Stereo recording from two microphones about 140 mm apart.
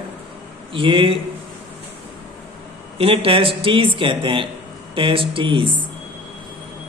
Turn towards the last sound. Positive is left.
turn(degrees=-40)  # may be behind; listen again after turning